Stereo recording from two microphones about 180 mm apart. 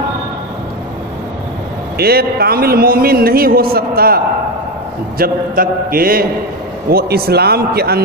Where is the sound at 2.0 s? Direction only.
60° right (ahead or behind).